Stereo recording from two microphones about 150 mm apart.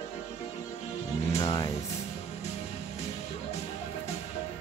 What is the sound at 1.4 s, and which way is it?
Speech, 25° left (ahead or behind).